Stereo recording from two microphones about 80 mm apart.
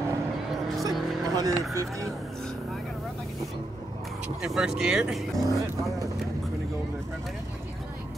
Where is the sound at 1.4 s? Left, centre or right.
Right.